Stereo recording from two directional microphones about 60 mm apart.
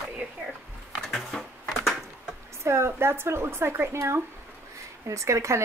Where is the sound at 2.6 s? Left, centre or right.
Right.